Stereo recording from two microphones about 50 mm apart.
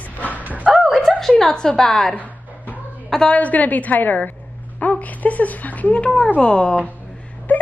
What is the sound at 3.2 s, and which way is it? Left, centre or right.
A woman's voice, left.